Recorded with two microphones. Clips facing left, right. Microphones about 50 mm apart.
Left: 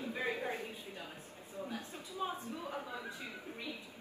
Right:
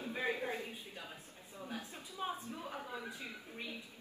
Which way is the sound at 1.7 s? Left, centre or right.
Left.